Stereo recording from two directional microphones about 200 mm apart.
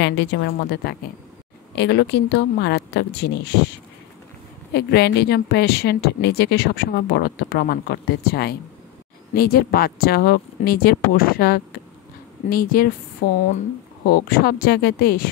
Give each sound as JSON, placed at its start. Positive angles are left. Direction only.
{"t": 0.0, "sound": "speech", "side_deg": 60}
{"t": 4.7, "sound": "speech", "side_deg": 55}
{"t": 14.0, "sound": "speech", "side_deg": 50}